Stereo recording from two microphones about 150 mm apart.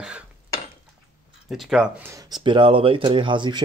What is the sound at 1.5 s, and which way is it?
Speech, centre (ahead or behind).